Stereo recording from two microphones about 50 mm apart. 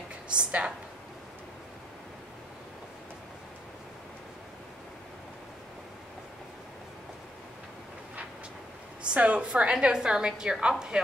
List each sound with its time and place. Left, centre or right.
0.3 s a woman's voice: right
9.1 s a woman's voice: right